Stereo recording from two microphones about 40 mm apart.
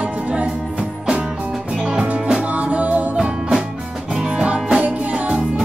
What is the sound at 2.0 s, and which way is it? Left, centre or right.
Music, centre.